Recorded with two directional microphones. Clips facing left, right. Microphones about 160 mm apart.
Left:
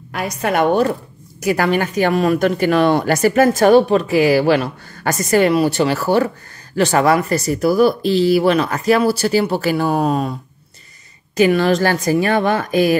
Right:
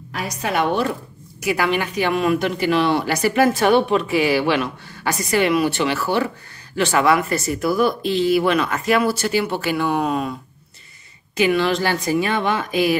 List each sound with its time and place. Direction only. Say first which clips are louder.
0.1 s a woman's voice: left 4 dB; 60° left (ahead or behind); by 10.3 s 35° left (ahead or behind)
11.3 s a woman's voice: left 4 dB; 45° left (ahead or behind)